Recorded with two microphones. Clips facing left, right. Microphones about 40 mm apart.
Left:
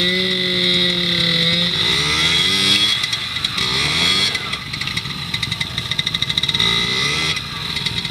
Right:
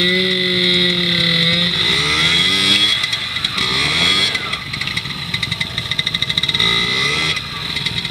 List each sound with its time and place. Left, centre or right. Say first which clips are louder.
0.0 s vehicle: right 3 dB; centre
6.6 s vehicle: right 3 dB; centre